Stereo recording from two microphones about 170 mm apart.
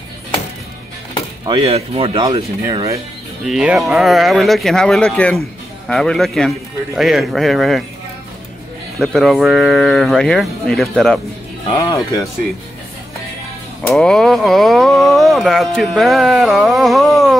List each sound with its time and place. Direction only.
1.4 s speech: 30° right (ahead or behind)
2.1 s speech: 25° right (ahead or behind)
3.4 s speech: centre (ahead or behind)
8.9 s speech: centre (ahead or behind)
11.7 s speech: 25° left (ahead or behind)
13.8 s speech: 5° left (ahead or behind)